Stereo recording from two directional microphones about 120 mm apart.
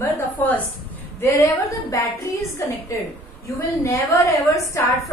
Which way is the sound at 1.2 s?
25° left (ahead or behind).